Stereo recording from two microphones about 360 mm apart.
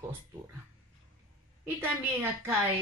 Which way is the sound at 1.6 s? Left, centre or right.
Centre.